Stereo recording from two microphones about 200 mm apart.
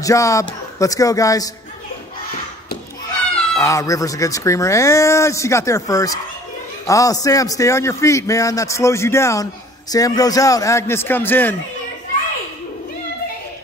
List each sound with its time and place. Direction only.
0.0 s a man's voice: 15° left (ahead or behind)
3.5 s a man's voice: 15° left (ahead or behind)